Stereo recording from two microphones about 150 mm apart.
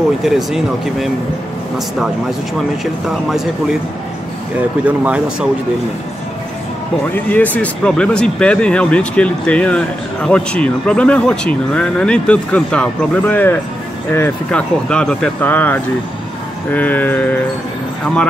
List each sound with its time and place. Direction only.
0.2 s speech: centre (ahead or behind)
2.8 s speech: centre (ahead or behind)
4.8 s speech: 10° right (ahead or behind)
7.2 s speech: 10° left (ahead or behind)
14.9 s speech: 5° left (ahead or behind)